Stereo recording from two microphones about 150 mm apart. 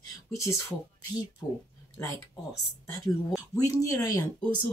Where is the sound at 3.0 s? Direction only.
20° left (ahead or behind).